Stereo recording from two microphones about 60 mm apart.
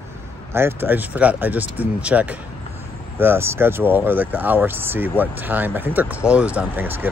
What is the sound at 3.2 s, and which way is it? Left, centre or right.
Speech, right.